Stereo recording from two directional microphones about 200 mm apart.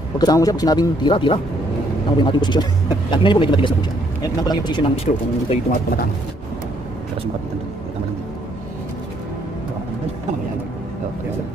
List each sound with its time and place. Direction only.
0.2 s speech: 20° left (ahead or behind)
5.7 s speech: 45° left (ahead or behind)